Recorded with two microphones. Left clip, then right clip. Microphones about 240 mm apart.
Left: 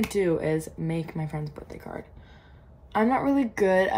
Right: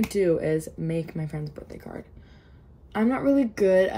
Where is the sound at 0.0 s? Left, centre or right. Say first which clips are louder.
Right 2 dB; centre.